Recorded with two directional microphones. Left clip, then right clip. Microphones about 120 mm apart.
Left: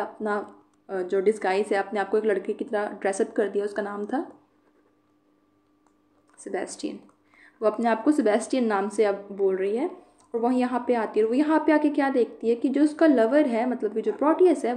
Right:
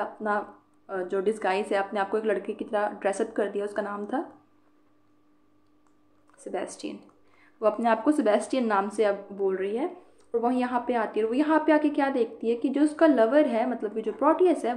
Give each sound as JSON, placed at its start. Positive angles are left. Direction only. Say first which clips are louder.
{"t": 0.0, "sound": "a woman's voice", "louder": "even", "side_deg": 30}
{"t": 6.3, "sound": "speech", "louder": "left 2 dB", "side_deg": 30}
{"t": 9.5, "sound": "a woman's voice", "louder": "left 2 dB", "side_deg": 40}